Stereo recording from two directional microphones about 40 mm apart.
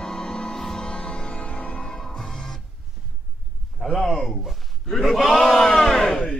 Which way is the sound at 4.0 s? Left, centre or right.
Centre.